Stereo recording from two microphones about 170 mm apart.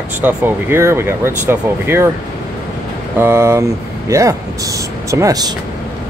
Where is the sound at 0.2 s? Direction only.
10° right (ahead or behind).